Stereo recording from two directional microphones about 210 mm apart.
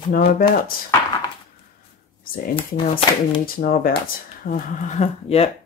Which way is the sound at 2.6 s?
25° left (ahead or behind).